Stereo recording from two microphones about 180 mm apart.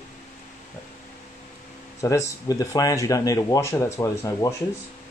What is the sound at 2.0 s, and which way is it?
Speech, 15° left (ahead or behind).